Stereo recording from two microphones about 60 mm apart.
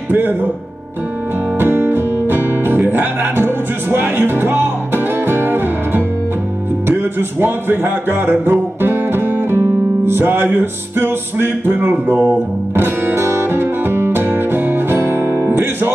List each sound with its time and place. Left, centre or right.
0.1 s speech: right
1.6 s music: right